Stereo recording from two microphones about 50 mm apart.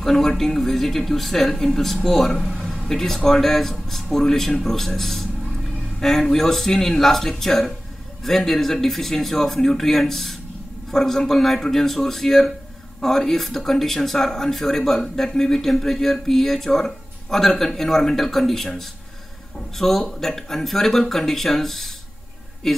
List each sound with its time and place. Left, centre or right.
0.0 s speech: centre